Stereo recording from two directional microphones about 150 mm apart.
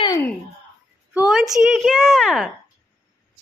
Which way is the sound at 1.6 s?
Centre (ahead or behind).